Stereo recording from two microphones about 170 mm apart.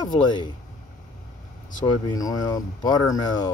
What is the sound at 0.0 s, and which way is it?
Speech, 25° left (ahead or behind).